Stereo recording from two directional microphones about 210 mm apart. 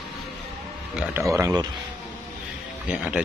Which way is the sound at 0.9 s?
10° right (ahead or behind).